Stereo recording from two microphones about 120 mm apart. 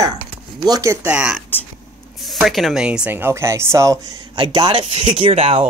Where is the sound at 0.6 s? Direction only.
30° right (ahead or behind).